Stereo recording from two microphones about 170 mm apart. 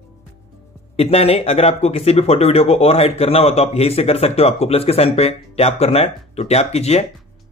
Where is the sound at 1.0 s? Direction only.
35° left (ahead or behind).